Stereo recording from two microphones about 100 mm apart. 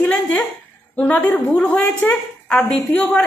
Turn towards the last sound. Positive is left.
turn(degrees=10)  # may be behind; listen again after turning